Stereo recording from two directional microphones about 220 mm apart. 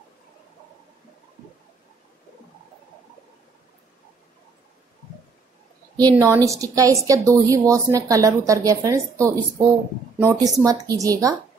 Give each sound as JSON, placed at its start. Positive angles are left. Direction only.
{"t": 5.9, "sound": "a woman's voice", "side_deg": -15}